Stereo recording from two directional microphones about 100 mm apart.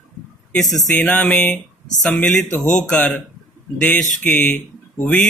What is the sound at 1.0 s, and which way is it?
Speech, 15° left (ahead or behind).